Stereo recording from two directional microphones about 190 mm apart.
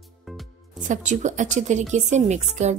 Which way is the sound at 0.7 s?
40° right (ahead or behind).